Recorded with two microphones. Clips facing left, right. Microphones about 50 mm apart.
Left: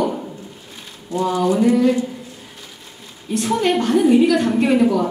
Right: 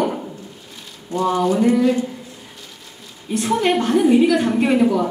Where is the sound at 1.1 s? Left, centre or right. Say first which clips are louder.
Even; right.